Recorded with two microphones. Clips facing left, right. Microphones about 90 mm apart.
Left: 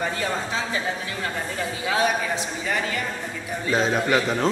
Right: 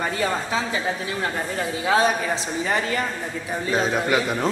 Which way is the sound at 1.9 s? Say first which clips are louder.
Right 3 dB; 35° right (ahead or behind).